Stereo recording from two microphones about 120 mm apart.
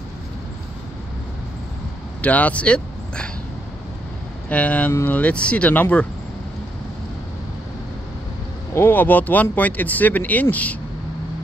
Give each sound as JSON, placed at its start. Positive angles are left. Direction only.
{"t": 2.2, "sound": "speech", "side_deg": 10}
{"t": 4.5, "sound": "speech", "side_deg": 10}
{"t": 8.7, "sound": "speech", "side_deg": 15}